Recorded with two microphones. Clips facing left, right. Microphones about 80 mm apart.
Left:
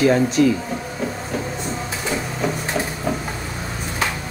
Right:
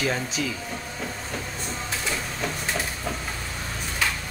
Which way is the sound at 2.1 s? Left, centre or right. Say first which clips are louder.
Left 7 dB; centre.